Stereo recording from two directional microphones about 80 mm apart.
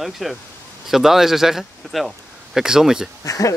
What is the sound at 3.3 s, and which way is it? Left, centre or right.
Speech, left.